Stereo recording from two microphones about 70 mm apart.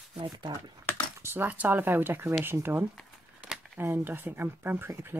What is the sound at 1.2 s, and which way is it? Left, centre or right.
Speech, right.